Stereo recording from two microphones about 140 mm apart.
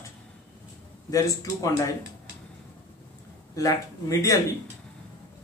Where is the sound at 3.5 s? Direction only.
25° left (ahead or behind).